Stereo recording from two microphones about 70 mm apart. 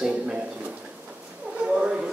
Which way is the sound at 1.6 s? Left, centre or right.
Centre.